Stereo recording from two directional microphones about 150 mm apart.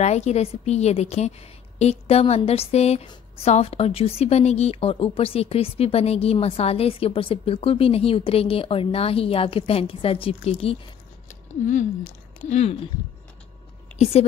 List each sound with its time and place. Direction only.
0.0 s a woman's voice: 45° left (ahead or behind)
11.2 s a sound: 55° left (ahead or behind)
12.4 s a woman's voice: 45° left (ahead or behind)